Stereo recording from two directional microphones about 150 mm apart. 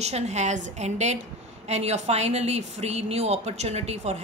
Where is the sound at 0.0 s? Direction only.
45° right (ahead or behind).